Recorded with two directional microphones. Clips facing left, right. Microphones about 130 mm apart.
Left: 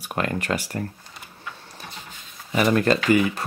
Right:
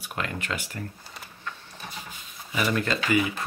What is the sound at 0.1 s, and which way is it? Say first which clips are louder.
Speech: left 7 dB; 45° left (ahead or behind).